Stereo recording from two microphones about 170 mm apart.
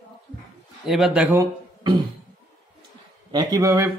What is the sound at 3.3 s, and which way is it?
Speech, 25° right (ahead or behind).